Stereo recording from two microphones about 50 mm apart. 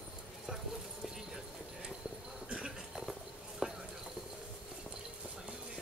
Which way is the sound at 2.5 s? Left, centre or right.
Centre.